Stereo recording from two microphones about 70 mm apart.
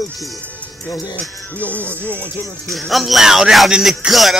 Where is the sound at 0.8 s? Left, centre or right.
Left.